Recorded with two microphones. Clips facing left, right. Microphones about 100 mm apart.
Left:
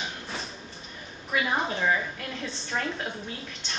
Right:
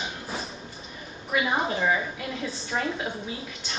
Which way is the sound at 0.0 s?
5° right (ahead or behind).